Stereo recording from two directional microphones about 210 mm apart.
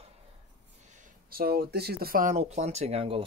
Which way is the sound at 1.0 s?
45° right (ahead or behind).